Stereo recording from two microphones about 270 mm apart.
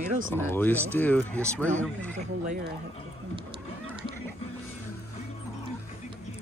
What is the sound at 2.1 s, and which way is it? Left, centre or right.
Speech, right.